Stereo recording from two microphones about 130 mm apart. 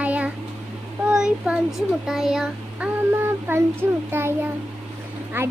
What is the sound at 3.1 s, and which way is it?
Child singing, 20° right (ahead or behind).